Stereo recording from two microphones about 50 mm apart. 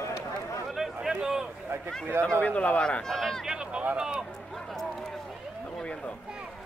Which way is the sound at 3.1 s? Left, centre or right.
Centre.